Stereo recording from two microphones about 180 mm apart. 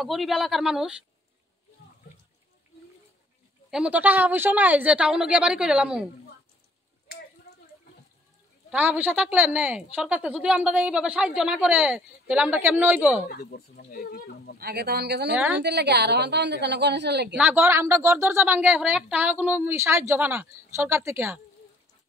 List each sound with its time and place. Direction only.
0.0 s speech: centre (ahead or behind)
3.7 s a woman's voice: 5° right (ahead or behind)
8.7 s a woman's voice: 10° right (ahead or behind)
13.3 s speech: 55° left (ahead or behind)
14.6 s speech: 60° right (ahead or behind)
15.3 s a woman's voice: 10° right (ahead or behind)
15.6 s a woman's voice: 65° right (ahead or behind)
17.4 s a woman's voice: 10° right (ahead or behind)